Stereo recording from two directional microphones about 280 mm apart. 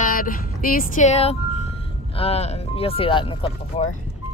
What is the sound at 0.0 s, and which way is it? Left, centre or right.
Speech, left.